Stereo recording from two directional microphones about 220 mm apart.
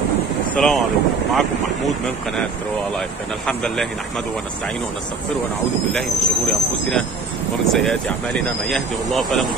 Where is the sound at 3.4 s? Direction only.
5° left (ahead or behind).